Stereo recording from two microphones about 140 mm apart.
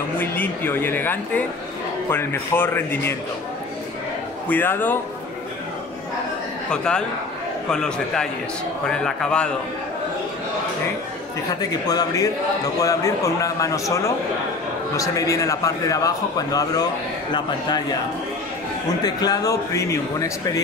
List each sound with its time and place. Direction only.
0.2 s speech: 15° left (ahead or behind)
4.5 s speech: 15° left (ahead or behind)
6.7 s a man's voice: 5° left (ahead or behind)
11.8 s a man's voice: 30° left (ahead or behind)
19.0 s a man's voice: 25° left (ahead or behind)